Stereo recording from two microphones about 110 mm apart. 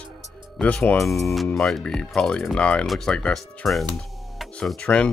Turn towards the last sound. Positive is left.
turn(degrees=10)  # may be behind; listen again after turning